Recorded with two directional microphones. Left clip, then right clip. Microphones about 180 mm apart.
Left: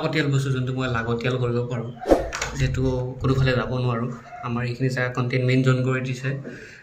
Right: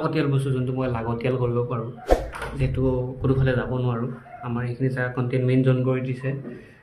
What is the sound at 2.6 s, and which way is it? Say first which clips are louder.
A man's voice: right 4 dB; 5° left (ahead or behind).